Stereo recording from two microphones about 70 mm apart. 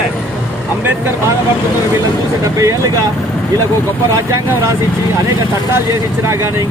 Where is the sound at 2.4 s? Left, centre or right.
Right.